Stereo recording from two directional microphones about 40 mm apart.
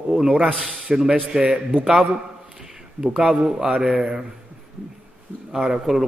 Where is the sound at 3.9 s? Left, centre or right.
Right.